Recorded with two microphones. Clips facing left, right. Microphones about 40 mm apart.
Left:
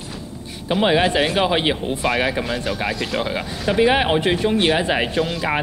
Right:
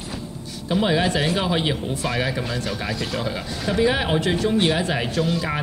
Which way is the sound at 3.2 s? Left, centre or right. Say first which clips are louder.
Left 3 dB; left.